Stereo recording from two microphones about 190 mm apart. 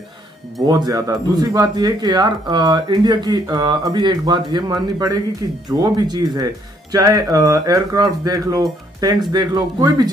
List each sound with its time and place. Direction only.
0.6 s speech: 20° right (ahead or behind)